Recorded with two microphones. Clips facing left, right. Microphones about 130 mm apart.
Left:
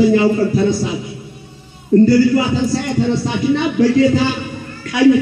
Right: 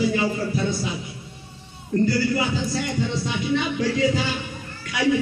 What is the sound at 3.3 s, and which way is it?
Speech, 60° left (ahead or behind).